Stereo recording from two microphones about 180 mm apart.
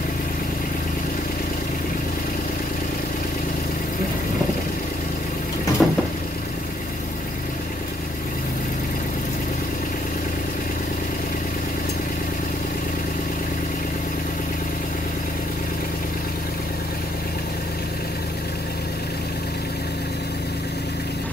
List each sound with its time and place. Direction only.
5.8 s vehicle: centre (ahead or behind)